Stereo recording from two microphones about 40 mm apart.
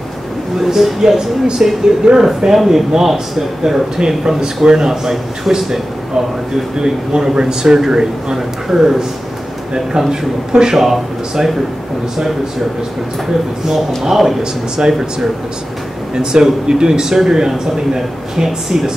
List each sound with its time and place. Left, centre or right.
0.6 s speech: centre
6.8 s speech: centre
10.5 s speech: centre
10.8 s speech: centre
13.7 s speech: centre
14.4 s speech: centre